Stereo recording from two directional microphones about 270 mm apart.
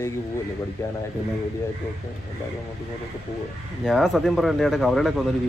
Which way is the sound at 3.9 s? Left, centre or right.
Centre.